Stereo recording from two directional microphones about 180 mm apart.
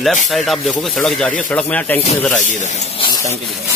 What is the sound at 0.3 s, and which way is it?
Speech, centre (ahead or behind).